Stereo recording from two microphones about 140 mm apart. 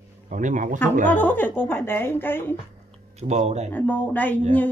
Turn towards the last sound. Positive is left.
turn(degrees=10)  # may be behind; listen again after turning